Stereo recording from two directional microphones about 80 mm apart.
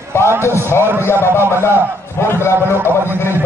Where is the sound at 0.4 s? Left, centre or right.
Left.